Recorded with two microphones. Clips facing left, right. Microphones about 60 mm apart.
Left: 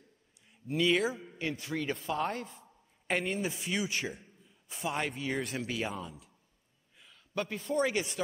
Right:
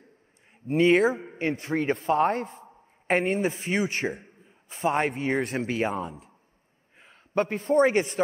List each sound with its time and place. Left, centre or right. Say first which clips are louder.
0.7 s a man's voice: right 8 dB; right